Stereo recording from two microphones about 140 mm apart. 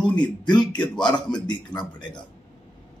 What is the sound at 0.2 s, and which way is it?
A man's voice, 35° left (ahead or behind).